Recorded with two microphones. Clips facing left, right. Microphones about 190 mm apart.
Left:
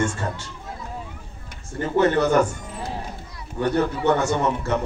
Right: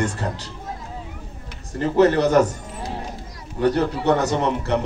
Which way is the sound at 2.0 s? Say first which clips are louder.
Right 3 dB; 35° right (ahead or behind).